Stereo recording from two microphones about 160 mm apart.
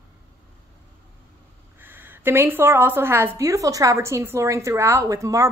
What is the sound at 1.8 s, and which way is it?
A woman's voice, 10° right (ahead or behind).